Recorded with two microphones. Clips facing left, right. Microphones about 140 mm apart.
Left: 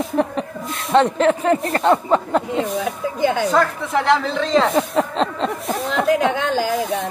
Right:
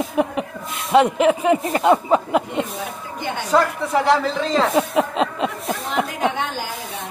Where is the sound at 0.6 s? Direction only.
Centre (ahead or behind).